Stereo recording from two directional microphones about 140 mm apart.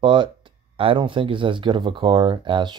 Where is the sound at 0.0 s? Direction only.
35° right (ahead or behind).